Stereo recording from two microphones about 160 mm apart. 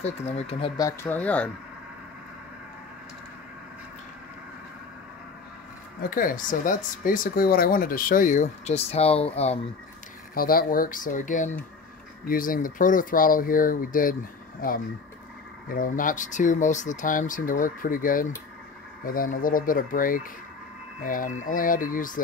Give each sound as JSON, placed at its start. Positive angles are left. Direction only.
{"t": 0.0, "sound": "speech", "side_deg": 45}
{"t": 0.7, "sound": "speech", "side_deg": 15}
{"t": 6.0, "sound": "speech", "side_deg": 60}
{"t": 10.3, "sound": "speech", "side_deg": 65}
{"t": 15.7, "sound": "speech", "side_deg": 60}